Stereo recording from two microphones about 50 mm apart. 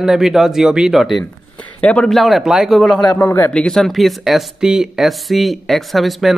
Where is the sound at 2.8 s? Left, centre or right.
Centre.